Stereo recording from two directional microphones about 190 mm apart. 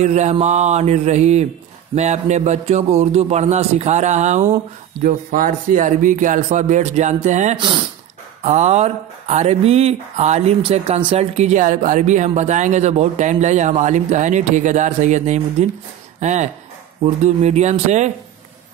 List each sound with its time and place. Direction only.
0.0 s speech: 35° right (ahead or behind)